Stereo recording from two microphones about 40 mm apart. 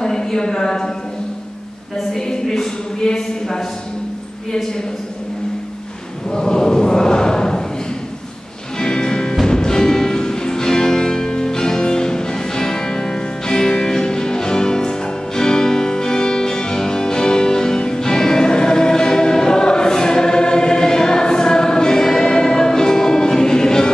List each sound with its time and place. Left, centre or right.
0.0 s speech: centre
2.1 s speech: centre
6.3 s choir: centre
8.7 s music: centre